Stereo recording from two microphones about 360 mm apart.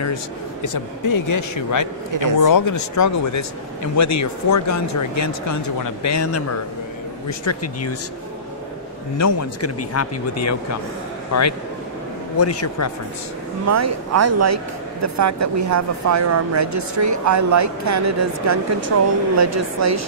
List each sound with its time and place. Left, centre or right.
1.0 s a man's voice: left
9.2 s a man's voice: left
13.7 s speech: right